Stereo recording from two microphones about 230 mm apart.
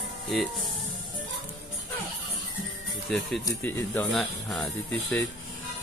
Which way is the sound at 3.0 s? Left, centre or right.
Centre.